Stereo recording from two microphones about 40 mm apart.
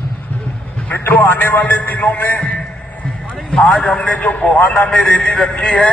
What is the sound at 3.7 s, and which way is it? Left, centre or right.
A man's voice, left.